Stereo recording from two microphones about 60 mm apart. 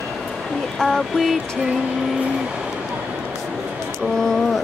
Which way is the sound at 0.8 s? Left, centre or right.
Centre.